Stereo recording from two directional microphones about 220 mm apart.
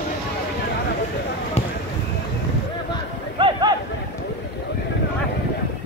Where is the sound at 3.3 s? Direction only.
20° right (ahead or behind).